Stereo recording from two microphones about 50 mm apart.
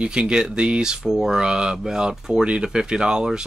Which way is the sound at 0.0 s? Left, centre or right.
Centre.